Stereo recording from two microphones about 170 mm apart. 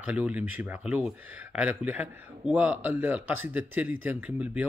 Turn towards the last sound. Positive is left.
turn(degrees=-10)  # may be behind; listen again after turning